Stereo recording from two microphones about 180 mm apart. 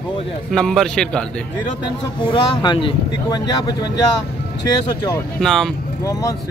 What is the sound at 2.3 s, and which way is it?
Speech, 25° left (ahead or behind).